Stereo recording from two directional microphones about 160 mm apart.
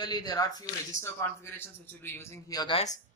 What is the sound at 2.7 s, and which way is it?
Speech, 45° left (ahead or behind).